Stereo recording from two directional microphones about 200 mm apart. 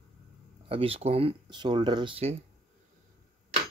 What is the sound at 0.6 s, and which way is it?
Speech, 30° right (ahead or behind).